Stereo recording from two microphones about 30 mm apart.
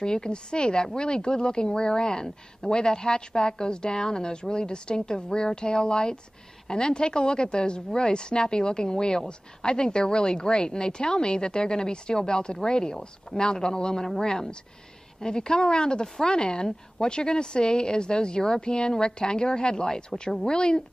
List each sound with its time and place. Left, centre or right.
0.0 s a woman's voice: left
15.1 s a woman's voice: left